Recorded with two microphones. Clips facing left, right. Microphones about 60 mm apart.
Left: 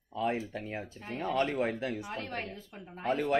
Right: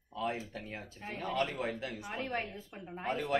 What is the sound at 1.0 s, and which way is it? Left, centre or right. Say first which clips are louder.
Speech: left 2 dB; centre.